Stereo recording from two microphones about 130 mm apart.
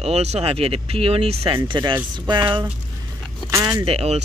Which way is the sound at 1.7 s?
40° right (ahead or behind).